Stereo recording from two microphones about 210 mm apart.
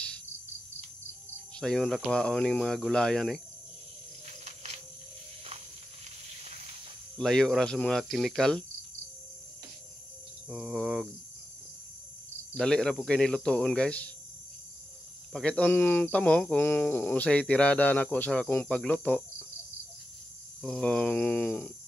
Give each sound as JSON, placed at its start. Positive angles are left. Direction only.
{"t": 1.6, "sound": "speech", "side_deg": 0}
{"t": 4.3, "sound": "cricket", "side_deg": -30}
{"t": 7.2, "sound": "speech", "side_deg": 0}
{"t": 10.5, "sound": "speech", "side_deg": 0}
{"t": 12.5, "sound": "speech", "side_deg": 5}
{"t": 15.3, "sound": "speech", "side_deg": 5}
{"t": 20.6, "sound": "speech", "side_deg": 5}